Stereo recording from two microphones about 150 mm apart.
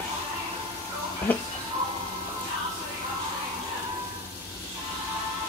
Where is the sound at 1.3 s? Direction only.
10° left (ahead or behind).